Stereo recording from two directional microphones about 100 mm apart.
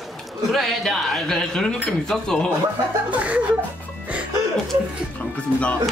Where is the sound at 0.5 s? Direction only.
Centre (ahead or behind).